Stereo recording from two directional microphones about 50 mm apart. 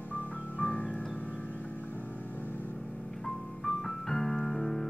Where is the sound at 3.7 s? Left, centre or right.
Centre.